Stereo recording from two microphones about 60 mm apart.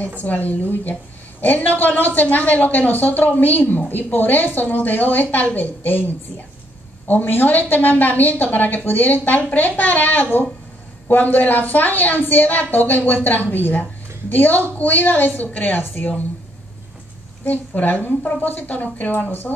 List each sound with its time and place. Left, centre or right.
0.2 s a woman's voice: left
17.5 s a woman's voice: left